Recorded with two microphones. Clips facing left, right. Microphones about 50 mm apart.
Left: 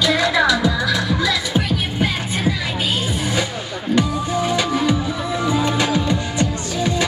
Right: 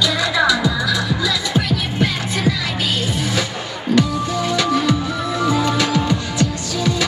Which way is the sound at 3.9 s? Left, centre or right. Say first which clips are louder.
Right 1 dB; centre.